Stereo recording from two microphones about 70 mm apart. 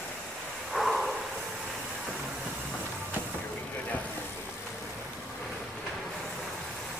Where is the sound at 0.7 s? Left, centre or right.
Centre.